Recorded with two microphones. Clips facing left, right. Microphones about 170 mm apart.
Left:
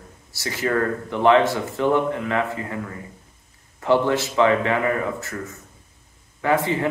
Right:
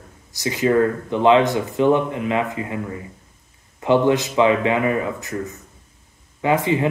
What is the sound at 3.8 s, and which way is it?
Speech, 15° right (ahead or behind).